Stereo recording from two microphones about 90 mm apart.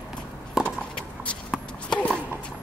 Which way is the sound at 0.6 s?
5° right (ahead or behind).